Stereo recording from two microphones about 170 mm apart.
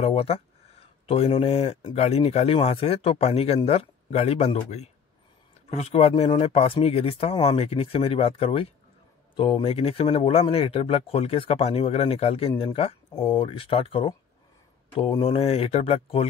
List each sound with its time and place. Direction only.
0.0 s speech: 35° left (ahead or behind)